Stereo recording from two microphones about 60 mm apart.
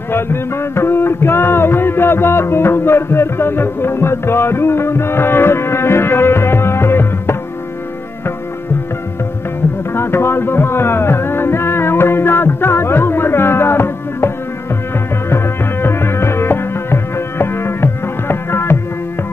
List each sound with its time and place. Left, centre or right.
0.1 s music: left
9.9 s music: left